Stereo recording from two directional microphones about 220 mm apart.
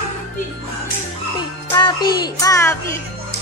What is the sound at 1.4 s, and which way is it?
A child's voice, 20° left (ahead or behind).